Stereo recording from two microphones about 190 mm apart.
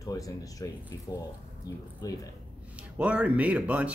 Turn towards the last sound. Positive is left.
turn(degrees=-5)  # may be behind; listen again after turning